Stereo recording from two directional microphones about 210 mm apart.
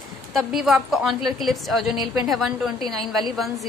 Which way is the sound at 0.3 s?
Centre (ahead or behind).